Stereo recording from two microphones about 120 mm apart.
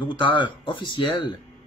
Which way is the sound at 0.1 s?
40° left (ahead or behind).